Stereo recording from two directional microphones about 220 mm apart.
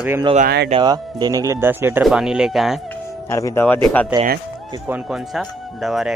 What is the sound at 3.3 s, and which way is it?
Speech, 15° left (ahead or behind).